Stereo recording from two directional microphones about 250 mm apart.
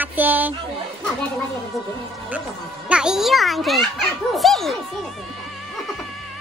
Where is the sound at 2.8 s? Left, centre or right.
Centre.